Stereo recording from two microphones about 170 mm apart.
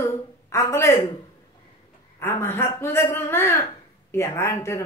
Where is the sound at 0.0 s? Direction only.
15° left (ahead or behind).